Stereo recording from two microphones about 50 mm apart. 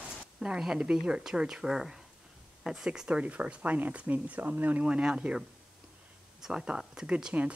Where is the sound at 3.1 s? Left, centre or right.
Right.